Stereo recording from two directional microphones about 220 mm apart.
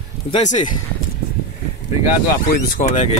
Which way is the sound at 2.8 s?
35° left (ahead or behind).